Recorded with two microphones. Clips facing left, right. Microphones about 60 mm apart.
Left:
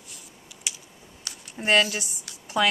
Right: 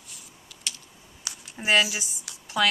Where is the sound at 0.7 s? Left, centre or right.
Centre.